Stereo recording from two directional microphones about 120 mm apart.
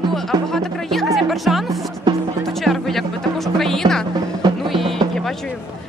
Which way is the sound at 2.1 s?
35° right (ahead or behind).